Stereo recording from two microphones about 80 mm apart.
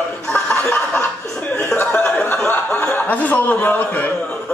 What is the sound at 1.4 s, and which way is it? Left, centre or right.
Speech, centre.